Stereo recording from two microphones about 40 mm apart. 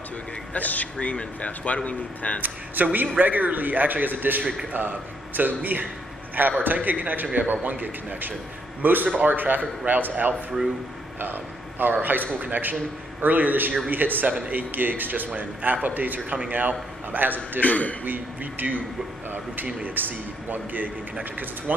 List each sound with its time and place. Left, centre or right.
0.5 s a man's voice: left
0.9 s speech: left
2.4 s a man's voice: right
11.8 s speech: right
17.6 s speech: left
18.0 s speech: right